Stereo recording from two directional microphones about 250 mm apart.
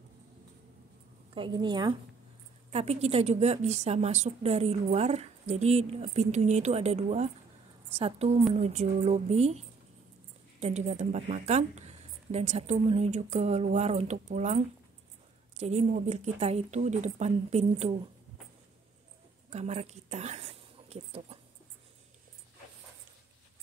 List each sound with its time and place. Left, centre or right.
1.3 s a woman's voice: centre
19.5 s speech: right